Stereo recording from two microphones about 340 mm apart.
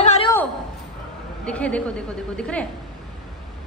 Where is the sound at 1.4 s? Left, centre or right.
Centre.